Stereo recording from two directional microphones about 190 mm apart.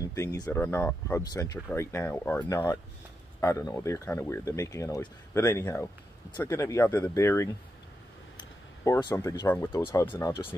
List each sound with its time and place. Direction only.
0.1 s speech: 15° left (ahead or behind)
8.8 s speech: 15° left (ahead or behind)